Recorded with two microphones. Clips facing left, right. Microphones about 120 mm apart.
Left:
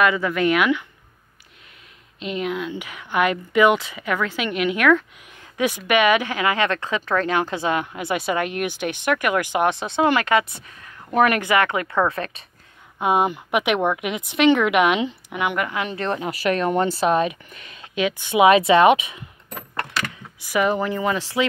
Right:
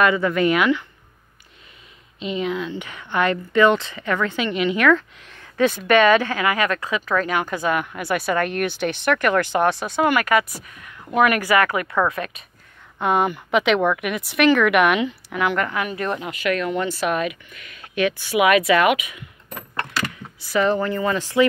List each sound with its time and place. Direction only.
0.0 s speech: centre (ahead or behind)
2.1 s a woman's voice: centre (ahead or behind); by 11.4 s 35° left (ahead or behind)
11.4 s a woman's voice: 25° left (ahead or behind)
13.0 s a woman's voice: 15° left (ahead or behind)
17.9 s a woman's voice: 20° left (ahead or behind)
20.3 s a woman's voice: 15° left (ahead or behind)